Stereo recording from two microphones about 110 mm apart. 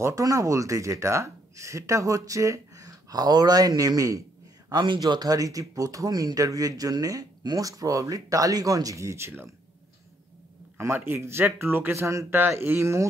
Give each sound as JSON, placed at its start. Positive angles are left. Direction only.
{"t": 0.0, "sound": "speech", "side_deg": -30}
{"t": 4.6, "sound": "speech", "side_deg": -40}
{"t": 10.8, "sound": "speech", "side_deg": -20}